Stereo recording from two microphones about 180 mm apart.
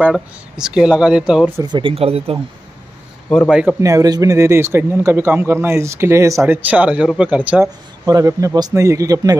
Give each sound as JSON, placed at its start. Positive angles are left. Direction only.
{"t": 0.0, "sound": "speech", "side_deg": -5}
{"t": 1.6, "sound": "speech", "side_deg": -25}
{"t": 3.3, "sound": "speech", "side_deg": 0}
{"t": 3.8, "sound": "speech", "side_deg": -20}